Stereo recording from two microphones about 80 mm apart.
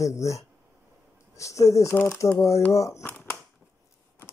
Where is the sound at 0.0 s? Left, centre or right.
Left.